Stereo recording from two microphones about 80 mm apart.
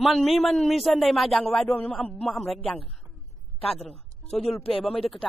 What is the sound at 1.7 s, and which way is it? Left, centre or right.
Speech, centre.